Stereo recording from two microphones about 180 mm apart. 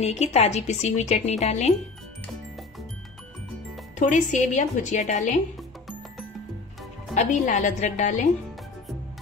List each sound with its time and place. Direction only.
0.0 s a woman's voice: 35° left (ahead or behind)
4.1 s a woman's voice: 40° left (ahead or behind)
7.2 s a woman's voice: 45° left (ahead or behind)